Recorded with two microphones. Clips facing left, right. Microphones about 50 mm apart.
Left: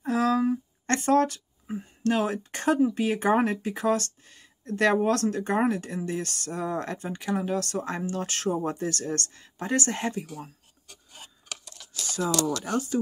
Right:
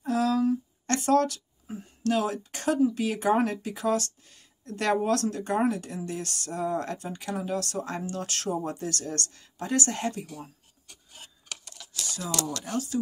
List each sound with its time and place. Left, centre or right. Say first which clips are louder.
0.0 s speech: left 1 dB; left
10.2 s speech: left 2 dB; centre
11.9 s a sound: left 6 dB; left
12.6 s speech: left 3 dB; left